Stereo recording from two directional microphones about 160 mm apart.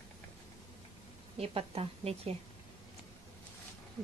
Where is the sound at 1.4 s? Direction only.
40° right (ahead or behind).